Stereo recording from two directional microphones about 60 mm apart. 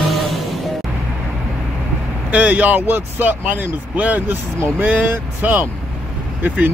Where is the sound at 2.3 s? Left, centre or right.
Right.